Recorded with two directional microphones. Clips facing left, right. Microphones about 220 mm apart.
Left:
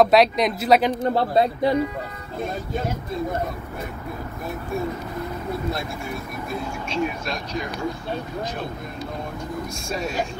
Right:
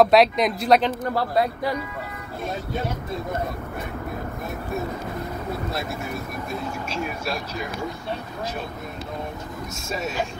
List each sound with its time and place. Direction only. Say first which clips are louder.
0.0 s a woman's voice: even; centre (ahead or behind)
1.0 s speech: left 3 dB; 25° left (ahead or behind)
9.8 s a woman's voice: even; 5° right (ahead or behind)